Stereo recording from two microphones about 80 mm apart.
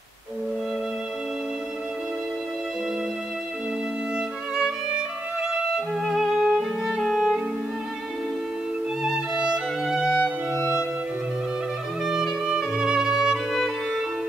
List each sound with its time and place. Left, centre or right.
4.6 s violin: centre
6.0 s music: centre
9.0 s music: centre
10.1 s music: left
12.0 s music: centre